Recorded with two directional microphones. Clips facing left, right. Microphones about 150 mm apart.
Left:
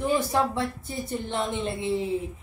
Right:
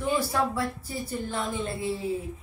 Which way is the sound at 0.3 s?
25° left (ahead or behind).